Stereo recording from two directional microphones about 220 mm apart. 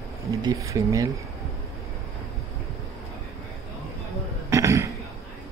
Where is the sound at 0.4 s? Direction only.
15° right (ahead or behind).